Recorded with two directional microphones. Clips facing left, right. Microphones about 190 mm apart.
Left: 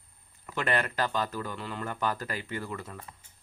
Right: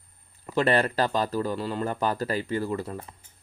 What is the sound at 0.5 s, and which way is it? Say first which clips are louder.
Speech: right 7 dB; 30° right (ahead or behind).